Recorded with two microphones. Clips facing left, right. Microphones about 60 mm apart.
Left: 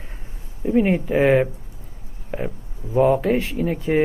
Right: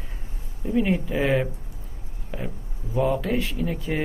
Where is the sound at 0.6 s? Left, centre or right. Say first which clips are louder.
Left 5 dB; left.